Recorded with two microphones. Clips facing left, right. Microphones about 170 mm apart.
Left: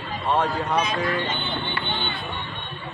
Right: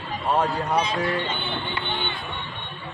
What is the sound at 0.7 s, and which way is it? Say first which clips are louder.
Speech: even; 30° right (ahead or behind).